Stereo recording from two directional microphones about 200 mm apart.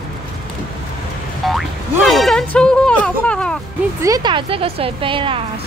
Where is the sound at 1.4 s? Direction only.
Centre (ahead or behind).